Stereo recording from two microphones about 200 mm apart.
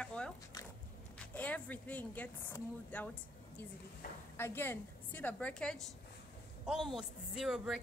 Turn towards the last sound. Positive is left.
turn(degrees=0)  # may be behind; listen again after turning